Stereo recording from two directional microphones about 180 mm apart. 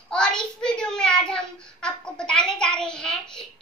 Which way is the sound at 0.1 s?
5° left (ahead or behind).